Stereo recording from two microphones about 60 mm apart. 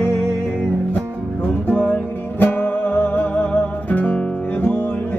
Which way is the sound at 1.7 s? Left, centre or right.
Left.